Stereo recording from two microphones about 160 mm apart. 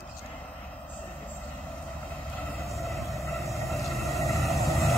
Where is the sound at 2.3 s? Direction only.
20° left (ahead or behind).